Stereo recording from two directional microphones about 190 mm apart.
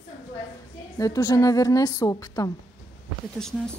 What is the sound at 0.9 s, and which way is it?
A woman's voice, 20° left (ahead or behind).